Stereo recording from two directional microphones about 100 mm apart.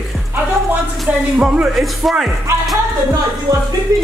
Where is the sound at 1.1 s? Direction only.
5° right (ahead or behind).